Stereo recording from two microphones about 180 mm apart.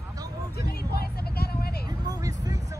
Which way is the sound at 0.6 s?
60° left (ahead or behind).